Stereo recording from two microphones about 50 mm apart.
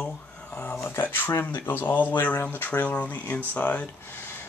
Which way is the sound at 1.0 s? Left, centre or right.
Left.